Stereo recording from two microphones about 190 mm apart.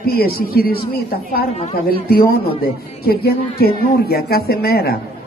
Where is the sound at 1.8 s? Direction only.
55° left (ahead or behind).